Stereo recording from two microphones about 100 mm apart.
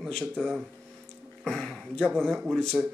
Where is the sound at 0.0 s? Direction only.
5° left (ahead or behind).